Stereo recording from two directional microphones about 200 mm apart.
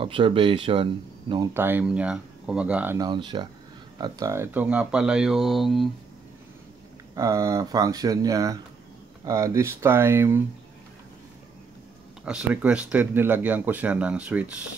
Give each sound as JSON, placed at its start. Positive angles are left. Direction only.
{"t": 0.0, "sound": "speech", "side_deg": -25}
{"t": 1.5, "sound": "speech", "side_deg": -10}
{"t": 3.1, "sound": "speech", "side_deg": -20}
{"t": 7.2, "sound": "speech", "side_deg": -15}
{"t": 12.3, "sound": "speech", "side_deg": -5}